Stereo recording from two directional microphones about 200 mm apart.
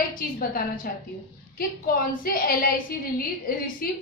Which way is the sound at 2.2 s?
45° left (ahead or behind).